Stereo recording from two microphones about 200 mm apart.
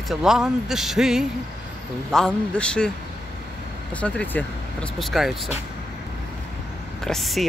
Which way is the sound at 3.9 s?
5° left (ahead or behind).